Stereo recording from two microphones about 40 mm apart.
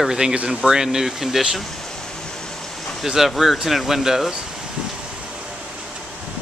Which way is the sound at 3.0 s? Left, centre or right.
Centre.